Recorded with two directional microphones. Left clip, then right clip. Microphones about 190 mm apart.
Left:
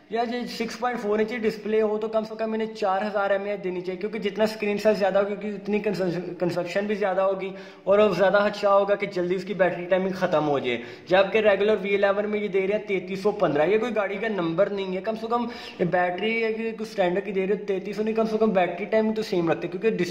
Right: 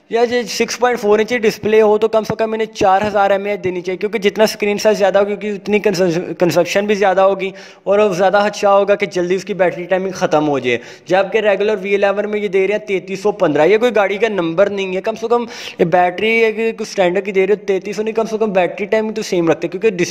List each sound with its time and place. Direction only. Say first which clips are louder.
0.1 s a man's voice: right 12 dB; 50° right (ahead or behind)
7.8 s a man's voice: right 7 dB; 40° right (ahead or behind)